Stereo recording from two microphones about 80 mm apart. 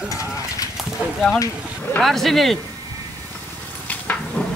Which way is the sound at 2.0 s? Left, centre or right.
Centre.